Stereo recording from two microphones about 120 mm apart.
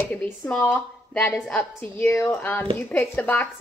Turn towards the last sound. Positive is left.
turn(degrees=15)  # may be behind; listen again after turning